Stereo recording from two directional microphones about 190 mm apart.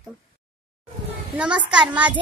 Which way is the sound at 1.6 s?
5° right (ahead or behind).